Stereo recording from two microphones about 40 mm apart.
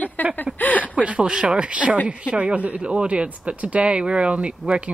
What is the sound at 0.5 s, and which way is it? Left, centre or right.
Speech, left.